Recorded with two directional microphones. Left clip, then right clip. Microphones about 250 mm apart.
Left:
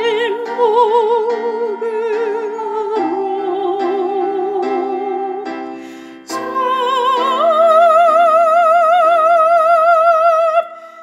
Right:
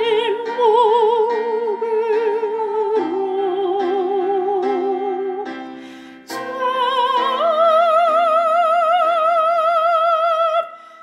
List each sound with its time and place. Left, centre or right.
0.2 s opera: centre
1.2 s music: left
1.9 s music: centre
6.6 s music: centre